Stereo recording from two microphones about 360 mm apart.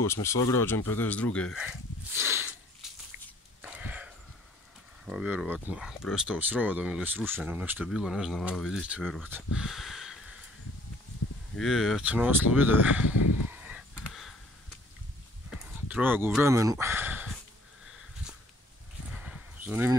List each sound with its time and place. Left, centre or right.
0.0 s speech: centre
2.8 s a sound: centre
5.0 s speech: centre
11.5 s speech: centre
13.5 s a sound: centre
15.9 s speech: centre
19.1 s livestock: centre